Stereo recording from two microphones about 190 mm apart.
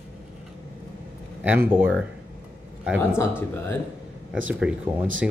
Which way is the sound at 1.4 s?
10° right (ahead or behind).